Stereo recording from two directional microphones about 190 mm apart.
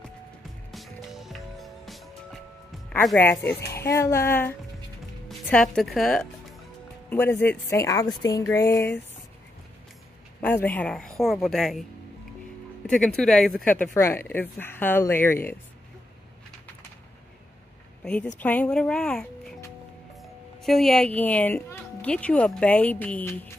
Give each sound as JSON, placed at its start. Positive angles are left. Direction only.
{"t": 0.7, "sound": "music", "side_deg": 0}
{"t": 3.2, "sound": "a woman's voice", "side_deg": 10}
{"t": 10.4, "sound": "a woman's voice", "side_deg": 10}
{"t": 12.8, "sound": "a woman's voice", "side_deg": 5}
{"t": 18.0, "sound": "a woman's voice", "side_deg": 5}